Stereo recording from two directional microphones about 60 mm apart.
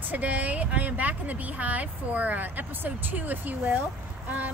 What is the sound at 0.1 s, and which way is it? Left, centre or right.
Speech, right.